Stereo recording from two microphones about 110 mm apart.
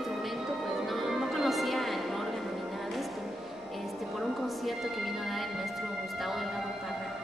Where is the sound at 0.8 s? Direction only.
Centre (ahead or behind).